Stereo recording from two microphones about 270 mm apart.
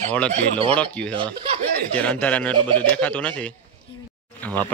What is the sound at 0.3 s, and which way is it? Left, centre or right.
Speech, centre.